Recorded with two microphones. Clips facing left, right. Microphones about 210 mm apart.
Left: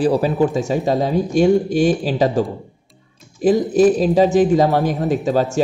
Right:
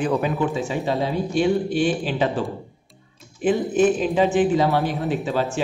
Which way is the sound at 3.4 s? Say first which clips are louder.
Left 5 dB; 35° left (ahead or behind).